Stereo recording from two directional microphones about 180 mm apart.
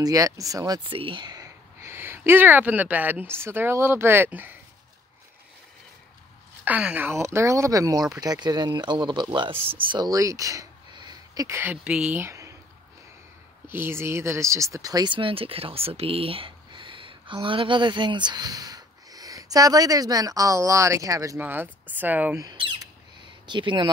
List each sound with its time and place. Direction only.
0.0 s speech: 20° right (ahead or behind)
6.6 s speech: 5° right (ahead or behind)
13.7 s speech: 15° right (ahead or behind)
22.4 s speech: 25° right (ahead or behind)